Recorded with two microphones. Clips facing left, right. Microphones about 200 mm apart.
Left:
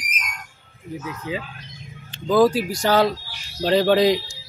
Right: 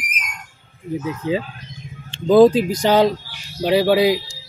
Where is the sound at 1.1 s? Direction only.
30° right (ahead or behind); by 4.2 s 5° right (ahead or behind).